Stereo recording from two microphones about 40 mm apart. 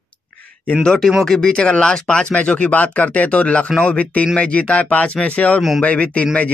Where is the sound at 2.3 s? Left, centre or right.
Left.